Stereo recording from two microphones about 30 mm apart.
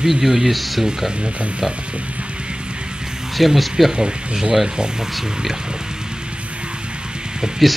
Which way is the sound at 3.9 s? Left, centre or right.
Right.